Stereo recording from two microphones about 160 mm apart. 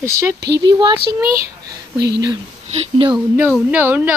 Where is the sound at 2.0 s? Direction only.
90° right.